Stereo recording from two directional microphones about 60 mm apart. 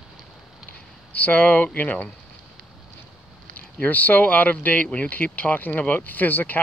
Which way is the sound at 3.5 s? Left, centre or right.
Left.